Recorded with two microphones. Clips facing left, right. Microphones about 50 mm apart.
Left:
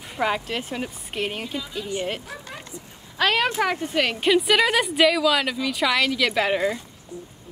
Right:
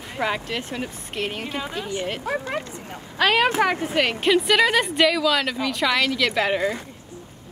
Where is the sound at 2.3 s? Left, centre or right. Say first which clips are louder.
Right 10 dB; right.